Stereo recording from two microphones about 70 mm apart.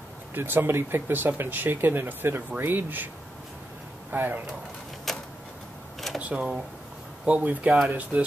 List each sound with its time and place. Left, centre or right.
0.3 s speech: right
4.1 s speech: right
5.1 s a sound: centre
6.1 s speech: centre